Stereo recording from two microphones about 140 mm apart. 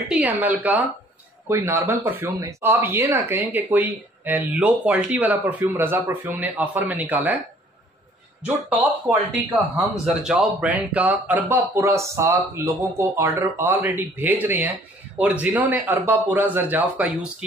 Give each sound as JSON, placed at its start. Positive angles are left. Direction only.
{"t": 0.1, "sound": "speech", "side_deg": -10}
{"t": 8.4, "sound": "speech", "side_deg": 0}